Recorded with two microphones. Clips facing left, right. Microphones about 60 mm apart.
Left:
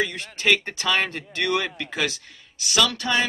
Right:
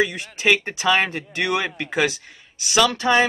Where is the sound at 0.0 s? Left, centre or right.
Centre.